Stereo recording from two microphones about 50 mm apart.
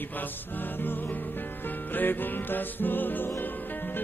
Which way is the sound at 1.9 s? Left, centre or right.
Left.